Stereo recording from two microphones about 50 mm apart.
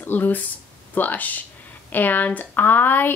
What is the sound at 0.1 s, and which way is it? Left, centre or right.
Speech, left.